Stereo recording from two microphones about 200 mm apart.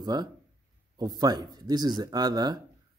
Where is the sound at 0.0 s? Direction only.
20° right (ahead or behind).